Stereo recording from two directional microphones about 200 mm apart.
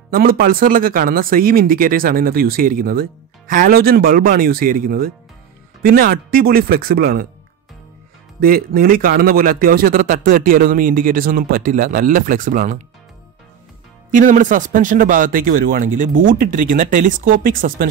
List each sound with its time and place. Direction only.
0.1 s speech: 45° right (ahead or behind)
8.4 s speech: 45° right (ahead or behind)
14.1 s speech: 40° right (ahead or behind)